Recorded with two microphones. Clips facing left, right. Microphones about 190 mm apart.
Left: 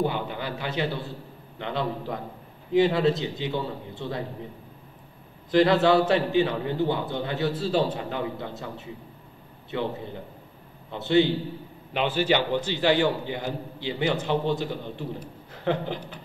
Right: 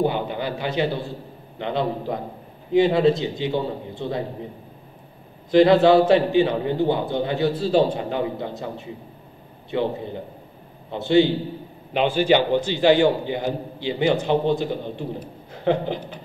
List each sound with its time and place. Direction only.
0.0 s a man's voice: 20° right (ahead or behind)
5.5 s a man's voice: 20° right (ahead or behind)